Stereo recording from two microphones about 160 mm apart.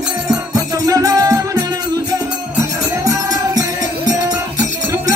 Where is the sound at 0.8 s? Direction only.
20° right (ahead or behind).